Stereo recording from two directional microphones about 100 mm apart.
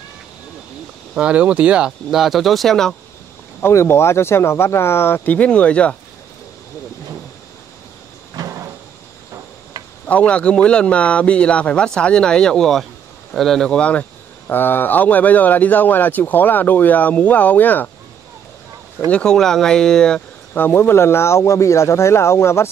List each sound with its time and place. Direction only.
1.1 s speech: 10° right (ahead or behind); by 3.0 s 5° left (ahead or behind)
3.6 s speech: 25° left (ahead or behind)
8.4 s cupboard open or close: 35° right (ahead or behind)
10.0 s speech: 15° left (ahead or behind)
19.0 s speech: 10° left (ahead or behind)
20.5 s speech: 20° left (ahead or behind)